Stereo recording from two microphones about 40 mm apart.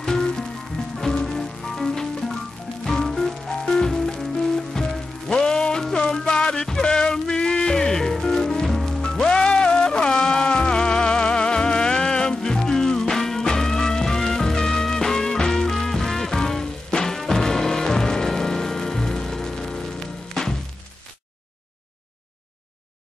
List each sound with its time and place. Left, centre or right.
0.0 s music: centre
9.0 s music: centre